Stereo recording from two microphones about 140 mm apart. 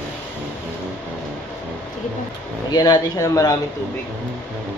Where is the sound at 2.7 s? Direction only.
30° left (ahead or behind).